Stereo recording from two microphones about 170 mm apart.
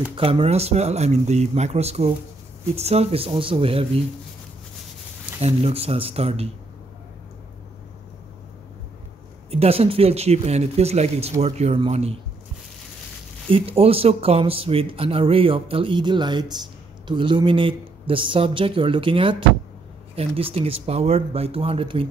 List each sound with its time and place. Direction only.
0.1 s speech: 35° right (ahead or behind)
5.4 s speech: 35° right (ahead or behind)
9.5 s speech: 35° right (ahead or behind)
13.5 s speech: 35° right (ahead or behind)